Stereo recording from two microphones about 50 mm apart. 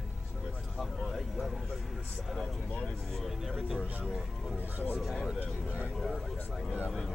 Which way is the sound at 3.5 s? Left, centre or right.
Centre.